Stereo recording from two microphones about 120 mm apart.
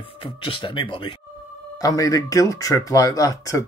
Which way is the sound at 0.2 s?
45° left (ahead or behind).